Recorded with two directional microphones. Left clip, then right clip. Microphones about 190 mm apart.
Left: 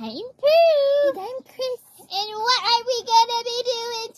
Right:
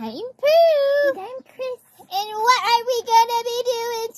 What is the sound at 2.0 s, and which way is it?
Child singing, 60° right (ahead or behind).